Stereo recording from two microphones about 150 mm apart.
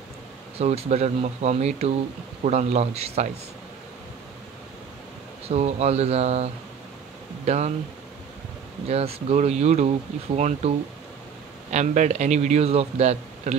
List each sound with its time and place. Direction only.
0.6 s a man's voice: 45° right (ahead or behind)
5.5 s a man's voice: 45° right (ahead or behind)
8.8 s a man's voice: 45° right (ahead or behind)
11.7 s a man's voice: 50° right (ahead or behind)